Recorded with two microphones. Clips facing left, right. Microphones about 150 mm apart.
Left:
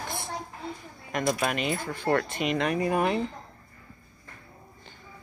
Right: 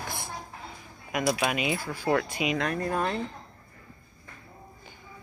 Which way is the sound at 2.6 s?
5° left (ahead or behind).